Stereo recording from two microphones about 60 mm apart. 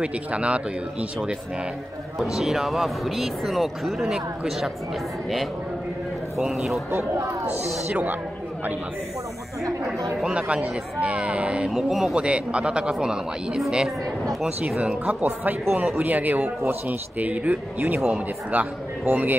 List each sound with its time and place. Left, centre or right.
0.0 s speech: centre
2.1 s speech: centre
6.3 s speech: centre
7.9 s speech: right
10.3 s speech: centre
11.7 s speech: centre
12.2 s a man's voice: centre